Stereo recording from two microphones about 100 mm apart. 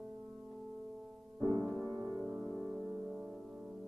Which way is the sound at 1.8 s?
15° left (ahead or behind).